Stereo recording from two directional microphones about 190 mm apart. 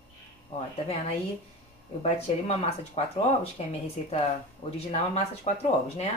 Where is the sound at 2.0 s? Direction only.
30° left (ahead or behind).